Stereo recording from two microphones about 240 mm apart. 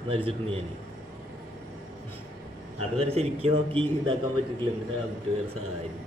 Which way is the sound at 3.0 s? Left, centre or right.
Right.